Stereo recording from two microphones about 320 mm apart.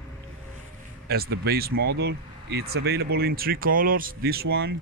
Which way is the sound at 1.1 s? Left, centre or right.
Right.